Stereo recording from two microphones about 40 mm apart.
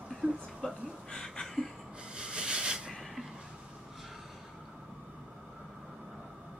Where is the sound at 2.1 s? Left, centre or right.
Right.